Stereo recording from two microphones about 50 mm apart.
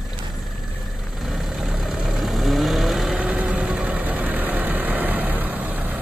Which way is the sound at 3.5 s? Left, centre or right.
Centre.